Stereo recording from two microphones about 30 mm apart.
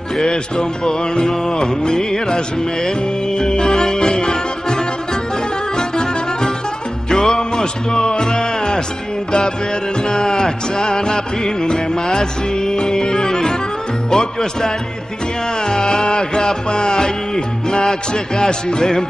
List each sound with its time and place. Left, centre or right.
0.2 s music: left
7.5 s speech: left
10.0 s music: left